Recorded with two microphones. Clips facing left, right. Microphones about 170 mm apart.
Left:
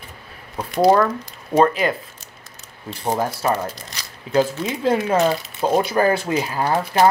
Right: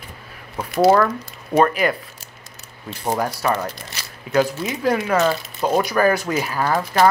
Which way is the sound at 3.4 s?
30° left (ahead or behind).